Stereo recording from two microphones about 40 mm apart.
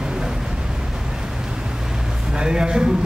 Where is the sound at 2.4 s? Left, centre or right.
Centre.